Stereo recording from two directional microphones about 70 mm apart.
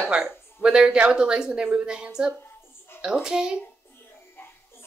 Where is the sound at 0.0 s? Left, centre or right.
Centre.